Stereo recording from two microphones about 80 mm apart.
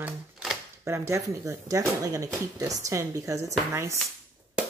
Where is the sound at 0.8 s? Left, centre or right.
Right.